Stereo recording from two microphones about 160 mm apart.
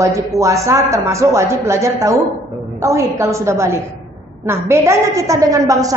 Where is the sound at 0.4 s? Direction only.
20° right (ahead or behind).